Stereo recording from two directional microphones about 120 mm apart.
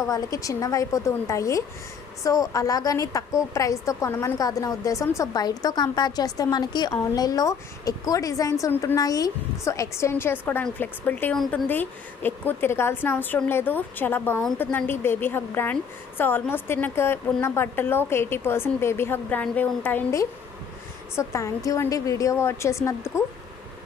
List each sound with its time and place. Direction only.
0.1 s a woman's voice: 30° left (ahead or behind)
21.2 s a woman's voice: 25° left (ahead or behind)